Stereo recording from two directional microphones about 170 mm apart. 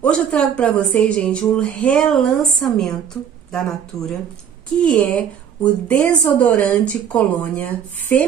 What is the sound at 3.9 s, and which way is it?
Speech, 20° left (ahead or behind).